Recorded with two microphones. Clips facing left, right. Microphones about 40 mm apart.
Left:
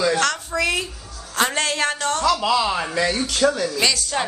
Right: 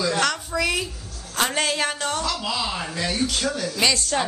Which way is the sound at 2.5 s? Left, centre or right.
Left.